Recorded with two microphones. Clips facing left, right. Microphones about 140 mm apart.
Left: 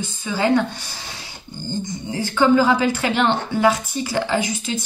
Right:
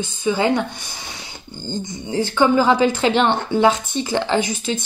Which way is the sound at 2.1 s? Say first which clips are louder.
Even; 20° right (ahead or behind).